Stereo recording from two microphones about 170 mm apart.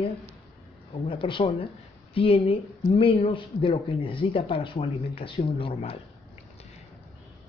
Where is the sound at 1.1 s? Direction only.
30° left (ahead or behind).